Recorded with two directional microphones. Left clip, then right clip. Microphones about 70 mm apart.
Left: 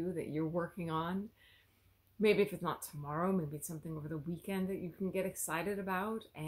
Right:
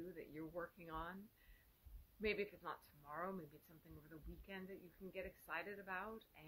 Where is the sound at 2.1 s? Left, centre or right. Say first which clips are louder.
Left 13 dB; left.